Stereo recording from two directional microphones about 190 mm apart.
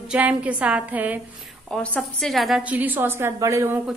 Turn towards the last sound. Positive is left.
turn(degrees=-15)  # may be behind; listen again after turning